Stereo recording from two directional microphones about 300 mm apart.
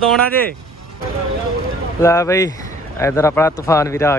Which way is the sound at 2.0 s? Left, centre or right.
Centre.